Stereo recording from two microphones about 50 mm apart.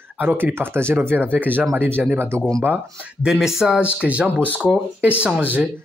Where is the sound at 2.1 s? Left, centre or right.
Right.